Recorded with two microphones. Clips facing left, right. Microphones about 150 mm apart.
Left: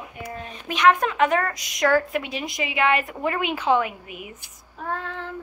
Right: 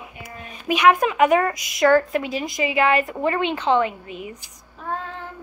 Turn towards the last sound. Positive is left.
turn(degrees=70)  # may be behind; listen again after turning